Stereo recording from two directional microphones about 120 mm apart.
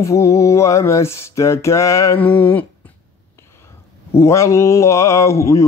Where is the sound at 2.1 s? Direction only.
15° left (ahead or behind).